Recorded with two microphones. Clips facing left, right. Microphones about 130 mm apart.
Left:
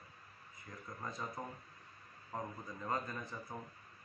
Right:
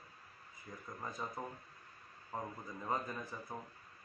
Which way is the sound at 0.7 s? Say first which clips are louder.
Right 1 dB; 10° right (ahead or behind).